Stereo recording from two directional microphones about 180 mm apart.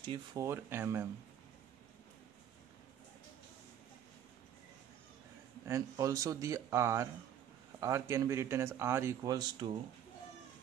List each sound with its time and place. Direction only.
0.0 s speech: 25° right (ahead or behind)
5.7 s speech: 15° right (ahead or behind)